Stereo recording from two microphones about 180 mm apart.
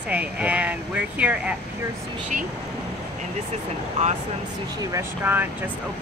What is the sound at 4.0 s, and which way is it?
Speech, 40° right (ahead or behind).